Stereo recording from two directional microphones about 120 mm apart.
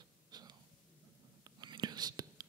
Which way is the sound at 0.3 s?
35° right (ahead or behind).